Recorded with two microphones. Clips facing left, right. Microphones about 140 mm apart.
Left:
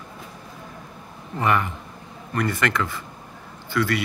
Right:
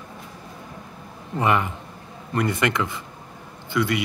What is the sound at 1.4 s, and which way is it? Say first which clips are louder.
Speech: right 1 dB; 20° right (ahead or behind).